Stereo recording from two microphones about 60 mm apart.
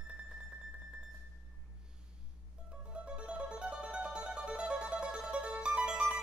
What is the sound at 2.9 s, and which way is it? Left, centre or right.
Mandolin, centre.